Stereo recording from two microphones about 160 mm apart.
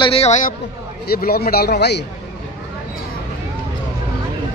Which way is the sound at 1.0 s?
75° left (ahead or behind).